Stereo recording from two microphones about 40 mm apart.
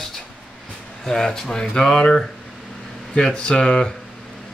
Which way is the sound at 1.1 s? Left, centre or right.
Centre.